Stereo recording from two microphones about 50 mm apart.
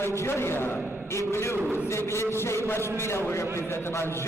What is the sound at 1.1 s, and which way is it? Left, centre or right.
A man's voice, left.